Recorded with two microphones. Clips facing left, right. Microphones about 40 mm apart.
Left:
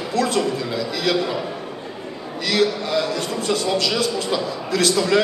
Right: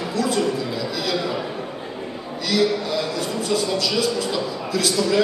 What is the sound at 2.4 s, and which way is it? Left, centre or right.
A man's voice, left.